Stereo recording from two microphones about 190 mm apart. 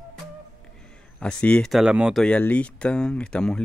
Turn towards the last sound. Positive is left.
turn(degrees=5)  # may be behind; listen again after turning